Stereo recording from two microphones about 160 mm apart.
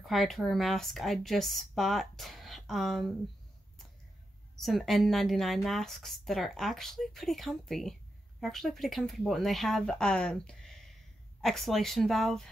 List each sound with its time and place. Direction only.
0.0 s a woman's voice: centre (ahead or behind)
4.6 s a woman's voice: centre (ahead or behind)